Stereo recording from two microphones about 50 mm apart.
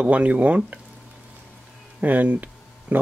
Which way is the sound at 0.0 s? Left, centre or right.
Right.